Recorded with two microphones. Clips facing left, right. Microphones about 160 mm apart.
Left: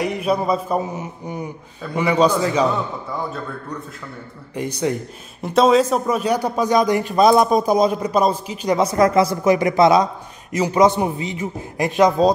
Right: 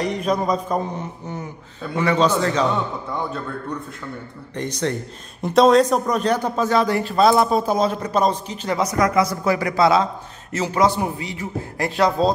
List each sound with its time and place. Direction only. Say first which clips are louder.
0.0 s a man's voice: left 1 dB; 10° left (ahead or behind)
4.6 s a man's voice: left 2 dB; 10° left (ahead or behind)
8.7 s a man's voice: left 3 dB; 30° left (ahead or behind)